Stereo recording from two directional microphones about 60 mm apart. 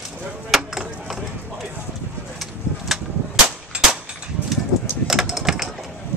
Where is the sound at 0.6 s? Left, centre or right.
Centre.